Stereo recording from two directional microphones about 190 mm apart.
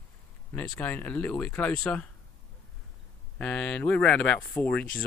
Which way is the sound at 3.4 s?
5° left (ahead or behind).